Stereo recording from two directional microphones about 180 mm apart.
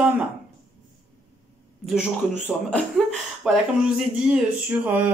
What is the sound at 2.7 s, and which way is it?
Speech, centre (ahead or behind).